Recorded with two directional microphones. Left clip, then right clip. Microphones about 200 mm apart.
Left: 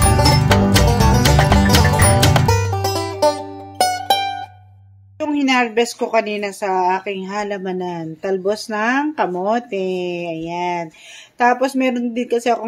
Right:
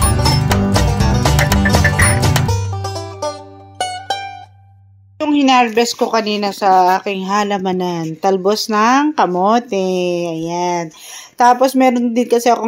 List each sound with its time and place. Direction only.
0.0 s music: centre (ahead or behind)
5.2 s speech: 35° right (ahead or behind)